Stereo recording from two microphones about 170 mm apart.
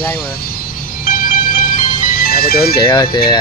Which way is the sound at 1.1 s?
55° left (ahead or behind).